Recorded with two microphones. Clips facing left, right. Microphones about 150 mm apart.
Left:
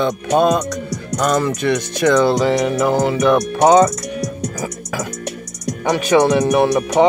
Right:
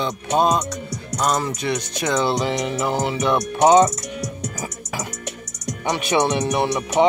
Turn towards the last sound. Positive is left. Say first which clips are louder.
# left 6 dB
turn(degrees=60)  # may be behind; listen again after turning